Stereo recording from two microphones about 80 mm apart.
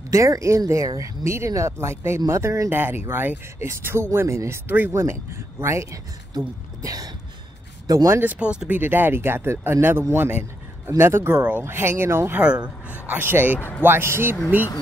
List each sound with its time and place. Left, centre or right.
0.1 s speech: right
2.7 s speech: right
4.6 s speech: right
4.9 s speech: right
6.3 s speech: right
7.8 s a sound: right
8.2 s speech: centre
8.7 s speech: right
11.3 s speech: centre
11.6 s speech: right
12.4 s speech: centre
13.1 s speech: right